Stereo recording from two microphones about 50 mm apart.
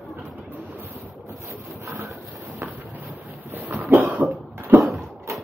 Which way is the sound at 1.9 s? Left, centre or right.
Right.